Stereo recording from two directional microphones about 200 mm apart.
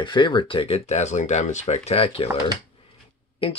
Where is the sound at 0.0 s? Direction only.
25° left (ahead or behind).